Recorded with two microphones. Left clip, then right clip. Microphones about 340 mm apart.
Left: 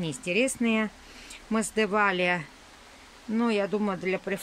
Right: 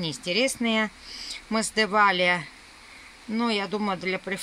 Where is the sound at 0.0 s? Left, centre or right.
Centre.